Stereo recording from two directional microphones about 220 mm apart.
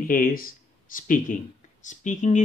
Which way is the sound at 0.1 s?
40° left (ahead or behind).